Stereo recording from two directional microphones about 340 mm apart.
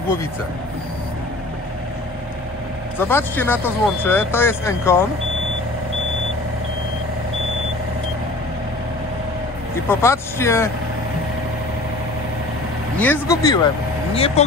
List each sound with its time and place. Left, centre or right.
3.0 s speech: centre
9.8 s speech: centre
12.9 s speech: centre